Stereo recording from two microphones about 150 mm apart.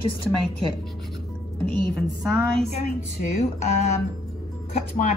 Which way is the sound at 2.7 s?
45° left (ahead or behind).